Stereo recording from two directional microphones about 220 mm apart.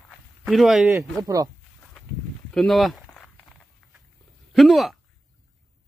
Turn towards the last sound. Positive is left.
turn(degrees=0)  # may be behind; listen again after turning